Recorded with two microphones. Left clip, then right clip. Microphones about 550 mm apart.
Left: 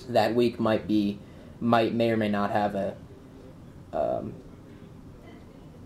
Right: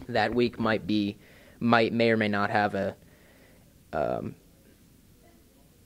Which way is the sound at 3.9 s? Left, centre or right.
Right.